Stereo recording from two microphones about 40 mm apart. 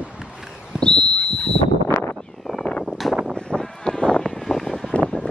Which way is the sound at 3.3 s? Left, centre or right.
Left.